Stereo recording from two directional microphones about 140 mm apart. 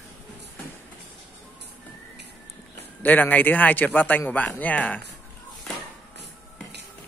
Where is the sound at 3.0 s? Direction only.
10° left (ahead or behind).